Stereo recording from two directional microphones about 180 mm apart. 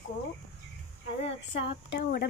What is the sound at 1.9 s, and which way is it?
Speech, 70° left (ahead or behind).